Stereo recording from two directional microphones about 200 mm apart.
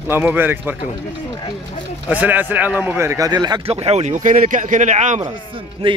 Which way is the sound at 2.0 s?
10° right (ahead or behind).